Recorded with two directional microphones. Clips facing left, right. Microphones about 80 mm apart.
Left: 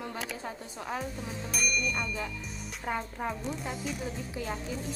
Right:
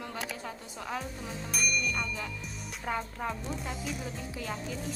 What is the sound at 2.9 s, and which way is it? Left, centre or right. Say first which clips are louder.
Speech: left 1 dB; centre.